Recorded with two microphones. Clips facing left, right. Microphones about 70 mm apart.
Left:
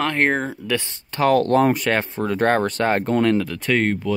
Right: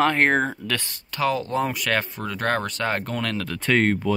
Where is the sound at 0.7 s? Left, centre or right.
Left.